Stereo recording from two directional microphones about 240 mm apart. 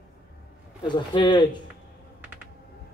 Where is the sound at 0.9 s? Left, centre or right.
Centre.